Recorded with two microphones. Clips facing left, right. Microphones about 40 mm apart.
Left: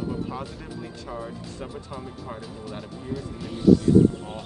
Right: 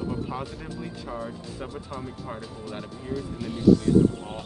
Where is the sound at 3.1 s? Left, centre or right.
Centre.